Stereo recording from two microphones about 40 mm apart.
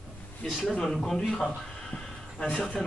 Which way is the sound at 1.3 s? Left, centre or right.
Centre.